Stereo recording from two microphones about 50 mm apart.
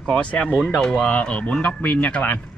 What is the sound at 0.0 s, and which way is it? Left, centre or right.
Speech, centre.